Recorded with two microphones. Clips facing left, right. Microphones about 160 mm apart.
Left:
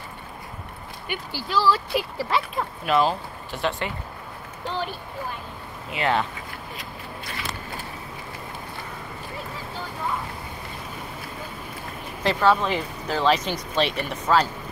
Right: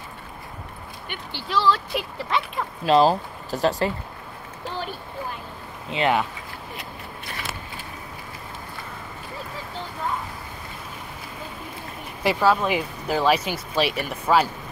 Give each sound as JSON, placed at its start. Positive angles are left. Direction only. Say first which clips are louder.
{"t": 1.0, "sound": "speech", "louder": "left 3 dB", "side_deg": 5}
{"t": 2.8, "sound": "speech", "louder": "right 5 dB", "side_deg": -35}
{"t": 5.9, "sound": "speech", "louder": "right 3 dB", "side_deg": -25}
{"t": 12.2, "sound": "speech", "louder": "even", "side_deg": -10}